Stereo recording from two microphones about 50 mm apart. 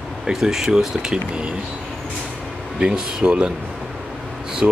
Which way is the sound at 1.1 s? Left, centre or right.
Right.